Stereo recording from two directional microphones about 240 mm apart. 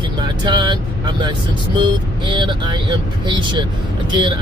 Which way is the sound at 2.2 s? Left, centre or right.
Centre.